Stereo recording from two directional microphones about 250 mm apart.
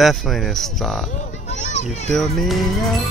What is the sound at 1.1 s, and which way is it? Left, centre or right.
Children playing, left.